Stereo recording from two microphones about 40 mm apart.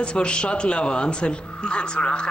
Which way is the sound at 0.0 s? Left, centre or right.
Left.